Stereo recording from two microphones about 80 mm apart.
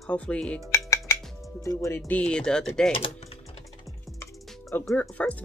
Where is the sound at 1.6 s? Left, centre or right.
Left.